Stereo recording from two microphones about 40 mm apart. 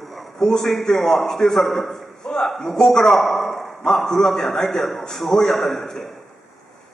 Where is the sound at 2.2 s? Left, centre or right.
Centre.